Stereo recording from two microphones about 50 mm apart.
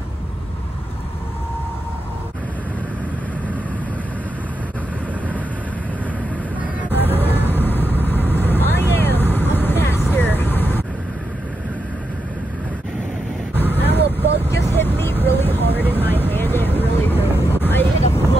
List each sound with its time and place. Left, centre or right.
7.2 s a sound: left
7.5 s vehicle: left
13.6 s vehicle: left